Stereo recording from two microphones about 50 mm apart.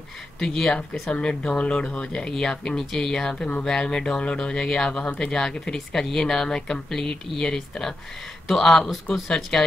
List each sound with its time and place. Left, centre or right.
0.4 s speech: centre